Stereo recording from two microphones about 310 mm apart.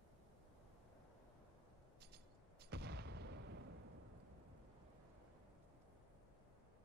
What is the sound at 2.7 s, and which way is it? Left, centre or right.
Artillery fire, right.